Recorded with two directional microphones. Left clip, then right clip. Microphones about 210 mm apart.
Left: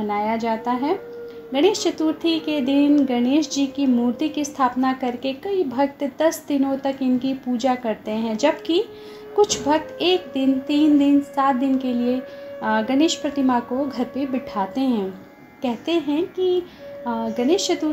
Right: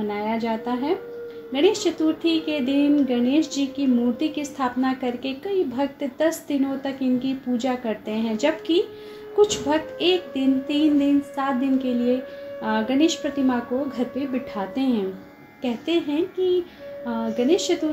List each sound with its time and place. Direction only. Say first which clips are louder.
0.1 s speech: left 6 dB; 25° left (ahead or behind)